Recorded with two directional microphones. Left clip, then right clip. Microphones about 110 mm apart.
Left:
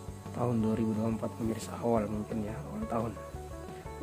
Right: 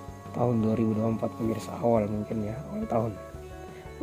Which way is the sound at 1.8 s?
55° right (ahead or behind).